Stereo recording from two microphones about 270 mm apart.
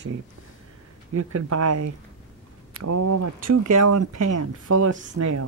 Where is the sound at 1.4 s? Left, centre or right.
Right.